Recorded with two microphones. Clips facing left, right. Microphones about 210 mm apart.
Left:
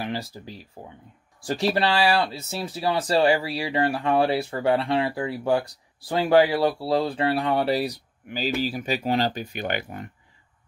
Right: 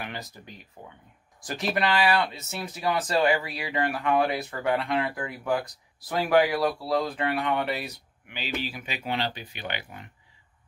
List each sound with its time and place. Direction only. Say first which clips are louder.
0.0 s speech: left 7 dB; 30° left (ahead or behind); by 10.1 s 45° left (ahead or behind)